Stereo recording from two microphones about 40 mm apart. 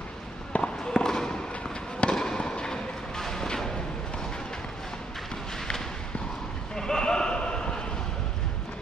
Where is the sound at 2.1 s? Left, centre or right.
Centre.